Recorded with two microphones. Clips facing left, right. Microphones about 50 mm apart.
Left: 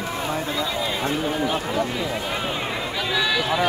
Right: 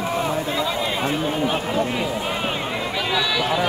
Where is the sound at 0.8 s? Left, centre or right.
Right.